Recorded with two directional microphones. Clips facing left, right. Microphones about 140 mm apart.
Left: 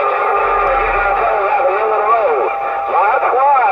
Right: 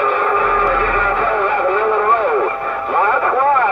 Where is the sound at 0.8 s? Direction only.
20° left (ahead or behind).